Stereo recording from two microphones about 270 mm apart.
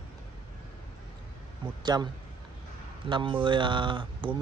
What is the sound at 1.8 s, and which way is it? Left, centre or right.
Speech, centre.